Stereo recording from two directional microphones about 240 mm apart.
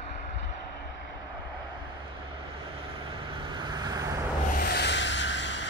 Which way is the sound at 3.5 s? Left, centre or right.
Centre.